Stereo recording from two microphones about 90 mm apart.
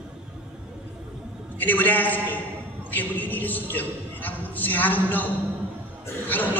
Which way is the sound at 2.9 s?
20° left (ahead or behind).